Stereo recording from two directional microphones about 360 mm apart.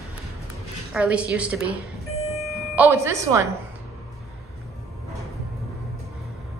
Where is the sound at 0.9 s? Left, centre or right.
Centre.